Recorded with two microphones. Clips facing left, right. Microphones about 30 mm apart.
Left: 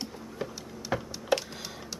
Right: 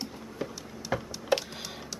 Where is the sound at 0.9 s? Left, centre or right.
Centre.